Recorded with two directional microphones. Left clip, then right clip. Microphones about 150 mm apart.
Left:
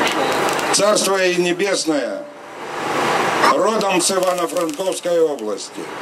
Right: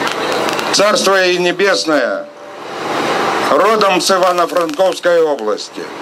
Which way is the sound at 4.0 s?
5° left (ahead or behind).